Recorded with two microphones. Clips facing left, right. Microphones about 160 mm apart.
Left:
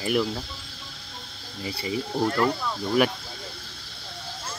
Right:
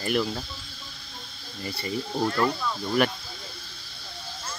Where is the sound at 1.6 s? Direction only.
5° left (ahead or behind).